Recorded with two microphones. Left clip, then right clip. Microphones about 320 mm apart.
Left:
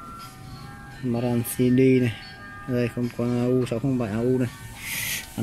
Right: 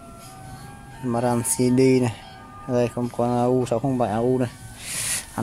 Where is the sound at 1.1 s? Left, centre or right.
Right.